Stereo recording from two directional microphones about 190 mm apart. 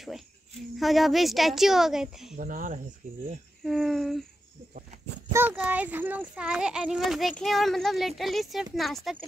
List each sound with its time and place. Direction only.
0.7 s a child's voice: centre (ahead or behind)
2.3 s speech: 45° right (ahead or behind)
3.6 s a child's voice: centre (ahead or behind)
5.3 s a child's voice: 10° right (ahead or behind)